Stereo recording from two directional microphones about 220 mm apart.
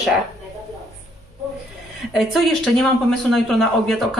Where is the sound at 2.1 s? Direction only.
Centre (ahead or behind).